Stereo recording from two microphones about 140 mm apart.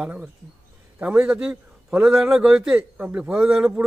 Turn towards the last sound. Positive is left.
turn(degrees=-5)  # may be behind; listen again after turning